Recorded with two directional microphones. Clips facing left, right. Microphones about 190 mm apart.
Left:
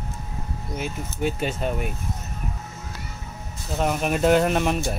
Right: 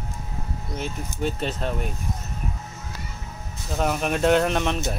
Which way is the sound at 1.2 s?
5° left (ahead or behind).